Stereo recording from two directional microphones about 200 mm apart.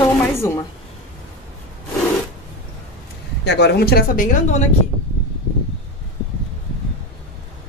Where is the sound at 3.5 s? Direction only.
55° left (ahead or behind).